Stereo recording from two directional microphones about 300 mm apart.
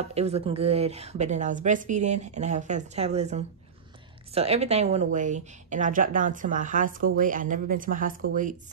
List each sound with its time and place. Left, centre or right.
0.0 s a woman's voice: right